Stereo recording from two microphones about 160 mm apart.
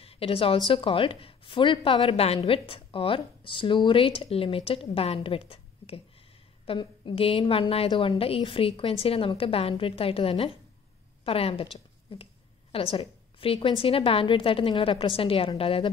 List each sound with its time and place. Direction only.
0.0 s a woman's voice: 35° left (ahead or behind)
12.7 s a woman's voice: 35° left (ahead or behind)